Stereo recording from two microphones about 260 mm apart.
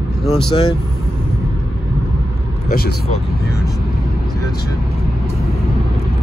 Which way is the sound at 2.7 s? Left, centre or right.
Left.